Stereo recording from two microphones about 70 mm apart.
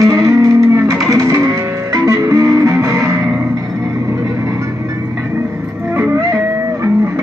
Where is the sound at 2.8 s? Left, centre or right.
Right.